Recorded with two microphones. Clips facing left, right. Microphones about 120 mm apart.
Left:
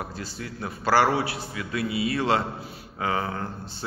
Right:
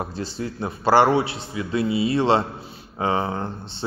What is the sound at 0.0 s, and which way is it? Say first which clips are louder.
A man's voice: right 6 dB; 25° right (ahead or behind).